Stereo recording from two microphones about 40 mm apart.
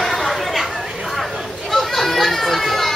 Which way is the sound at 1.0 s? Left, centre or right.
Centre.